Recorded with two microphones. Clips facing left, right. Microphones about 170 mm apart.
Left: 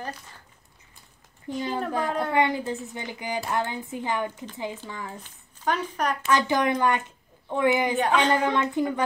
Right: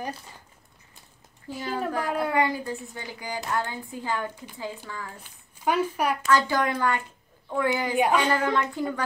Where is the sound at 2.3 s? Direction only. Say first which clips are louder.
Left 1 dB; 25° left (ahead or behind).